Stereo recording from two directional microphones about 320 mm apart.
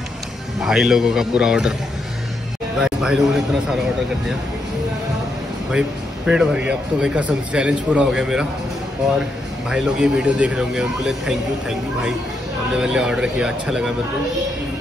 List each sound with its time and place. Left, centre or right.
0.6 s speech: centre
2.8 s speech: centre
5.7 s speech: centre
9.7 s speech: centre
12.7 s speech: centre